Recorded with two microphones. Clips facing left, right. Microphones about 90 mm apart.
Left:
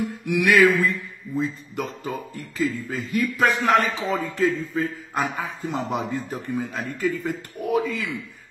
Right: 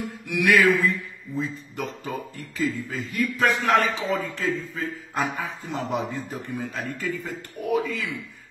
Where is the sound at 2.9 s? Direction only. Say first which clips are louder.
Left 2 dB; 15° left (ahead or behind).